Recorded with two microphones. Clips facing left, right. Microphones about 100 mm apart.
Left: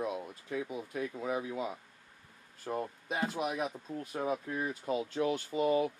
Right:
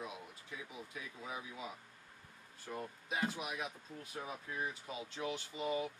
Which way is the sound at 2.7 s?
50° left (ahead or behind).